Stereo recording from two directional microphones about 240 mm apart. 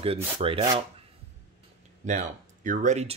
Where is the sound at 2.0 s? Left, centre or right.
Right.